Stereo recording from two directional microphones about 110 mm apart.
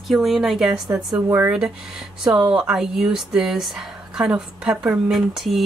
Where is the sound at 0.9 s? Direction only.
15° right (ahead or behind).